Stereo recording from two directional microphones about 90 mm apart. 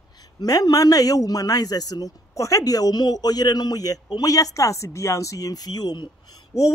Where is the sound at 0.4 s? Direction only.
45° left (ahead or behind).